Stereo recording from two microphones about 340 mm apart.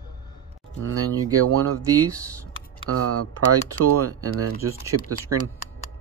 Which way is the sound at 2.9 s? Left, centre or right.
Right.